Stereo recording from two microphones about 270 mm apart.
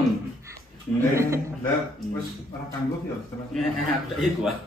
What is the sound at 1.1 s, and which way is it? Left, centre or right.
Speech, centre.